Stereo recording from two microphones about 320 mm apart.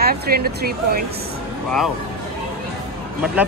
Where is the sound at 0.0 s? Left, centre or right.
Right.